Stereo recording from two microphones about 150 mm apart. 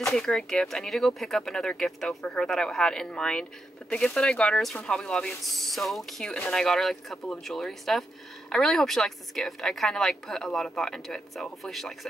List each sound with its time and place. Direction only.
0.0 s speech: centre (ahead or behind)